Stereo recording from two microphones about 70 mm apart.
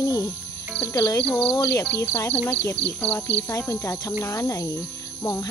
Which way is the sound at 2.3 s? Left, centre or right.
Left.